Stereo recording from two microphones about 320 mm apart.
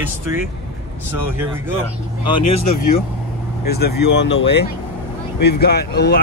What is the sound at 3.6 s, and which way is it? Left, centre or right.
Speech, left.